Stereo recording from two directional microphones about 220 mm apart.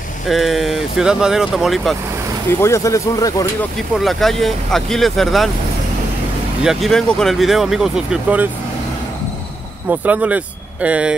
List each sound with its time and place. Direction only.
0.3 s speech: centre (ahead or behind)
2.6 s speech: 15° left (ahead or behind)
4.0 s speech: centre (ahead or behind)
6.6 s speech: centre (ahead or behind)
9.8 s speech: 5° right (ahead or behind)